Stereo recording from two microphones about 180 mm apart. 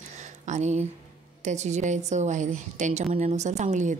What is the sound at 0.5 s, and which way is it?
A woman's voice, 40° right (ahead or behind).